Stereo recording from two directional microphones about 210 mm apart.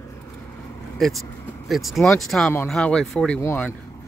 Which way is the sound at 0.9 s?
Centre (ahead or behind).